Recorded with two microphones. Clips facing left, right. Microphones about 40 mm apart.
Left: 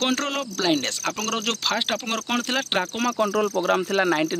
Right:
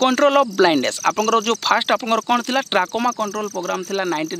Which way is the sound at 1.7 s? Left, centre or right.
Right.